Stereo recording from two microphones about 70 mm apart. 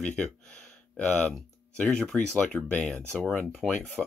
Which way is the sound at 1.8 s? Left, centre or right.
Centre.